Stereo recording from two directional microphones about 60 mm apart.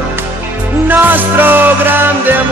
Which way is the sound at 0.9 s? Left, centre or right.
Right.